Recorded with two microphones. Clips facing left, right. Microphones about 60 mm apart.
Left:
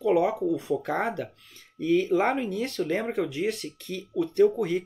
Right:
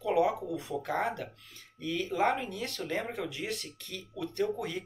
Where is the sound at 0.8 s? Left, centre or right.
Left.